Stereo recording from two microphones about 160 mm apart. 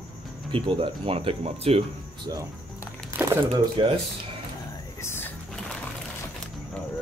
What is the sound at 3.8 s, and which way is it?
Speech, 35° right (ahead or behind).